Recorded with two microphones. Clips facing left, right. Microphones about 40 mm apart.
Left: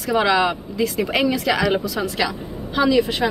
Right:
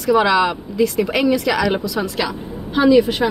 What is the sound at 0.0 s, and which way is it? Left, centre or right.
A woman's voice, centre.